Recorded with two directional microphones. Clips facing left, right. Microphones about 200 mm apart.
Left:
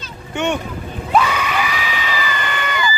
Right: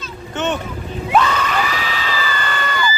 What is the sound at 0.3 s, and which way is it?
Vehicle, 15° left (ahead or behind).